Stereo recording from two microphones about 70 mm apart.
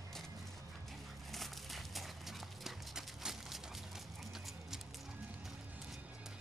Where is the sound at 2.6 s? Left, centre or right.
Centre.